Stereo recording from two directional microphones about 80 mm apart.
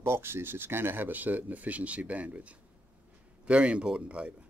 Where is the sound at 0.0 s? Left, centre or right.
Right; by 4.5 s centre.